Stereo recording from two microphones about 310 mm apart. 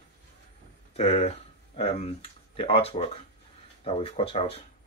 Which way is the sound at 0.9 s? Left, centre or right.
Centre.